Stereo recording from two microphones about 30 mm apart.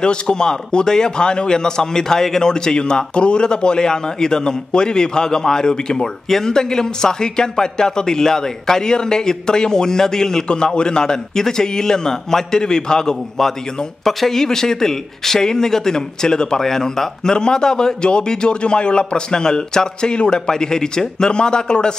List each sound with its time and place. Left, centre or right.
0.0 s a man's voice: left
10.5 s a man's voice: left